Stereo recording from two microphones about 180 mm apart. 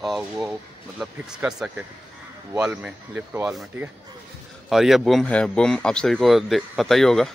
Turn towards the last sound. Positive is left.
turn(degrees=0)  # may be behind; listen again after turning